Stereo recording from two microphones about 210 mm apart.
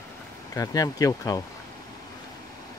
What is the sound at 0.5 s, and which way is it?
Speech, 15° left (ahead or behind).